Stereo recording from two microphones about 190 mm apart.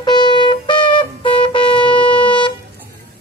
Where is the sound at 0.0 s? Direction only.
25° left (ahead or behind).